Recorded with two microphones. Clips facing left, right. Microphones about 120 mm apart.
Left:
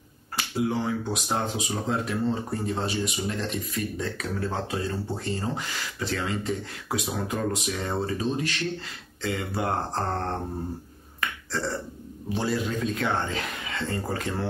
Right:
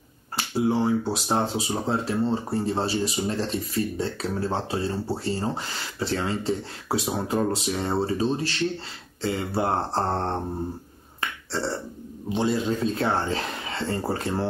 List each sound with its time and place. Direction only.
0.4 s speech: 30° right (ahead or behind)
11.1 s finger snapping: 30° right (ahead or behind)
12.3 s speech: 25° right (ahead or behind)